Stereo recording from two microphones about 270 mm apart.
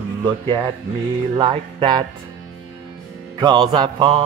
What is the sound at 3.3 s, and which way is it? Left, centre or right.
Music, centre.